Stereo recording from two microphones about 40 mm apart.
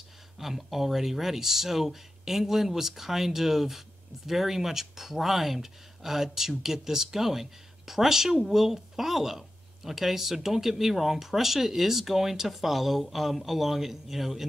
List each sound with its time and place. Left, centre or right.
0.4 s speech: centre